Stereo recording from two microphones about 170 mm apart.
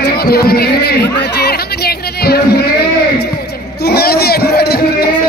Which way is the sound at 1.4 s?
65° left (ahead or behind).